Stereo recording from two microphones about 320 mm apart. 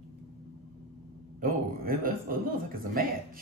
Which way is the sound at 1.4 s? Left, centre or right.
Right.